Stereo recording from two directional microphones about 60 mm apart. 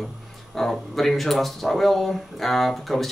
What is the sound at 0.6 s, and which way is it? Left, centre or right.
Speech, centre.